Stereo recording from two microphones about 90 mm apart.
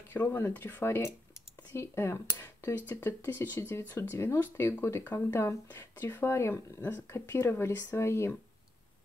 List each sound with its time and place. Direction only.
0.1 s speech: 25° left (ahead or behind)